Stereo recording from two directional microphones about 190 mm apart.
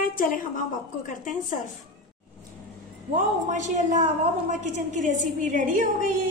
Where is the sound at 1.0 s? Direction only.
40° left (ahead or behind).